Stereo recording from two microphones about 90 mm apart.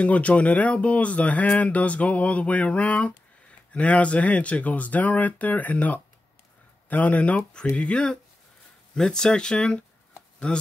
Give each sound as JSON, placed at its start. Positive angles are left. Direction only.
{"t": 0.0, "sound": "speech", "side_deg": 15}